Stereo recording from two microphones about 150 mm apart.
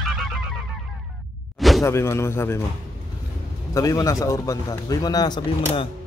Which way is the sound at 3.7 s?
20° left (ahead or behind).